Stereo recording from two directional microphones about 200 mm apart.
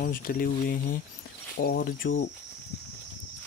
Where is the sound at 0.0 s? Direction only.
45° left (ahead or behind).